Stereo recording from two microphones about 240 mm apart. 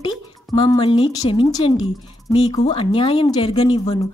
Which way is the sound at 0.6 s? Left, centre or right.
Centre.